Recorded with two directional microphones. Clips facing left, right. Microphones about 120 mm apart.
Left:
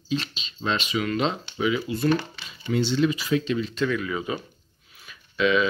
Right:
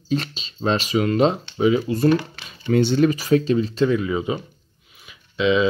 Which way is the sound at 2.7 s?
50° right (ahead or behind).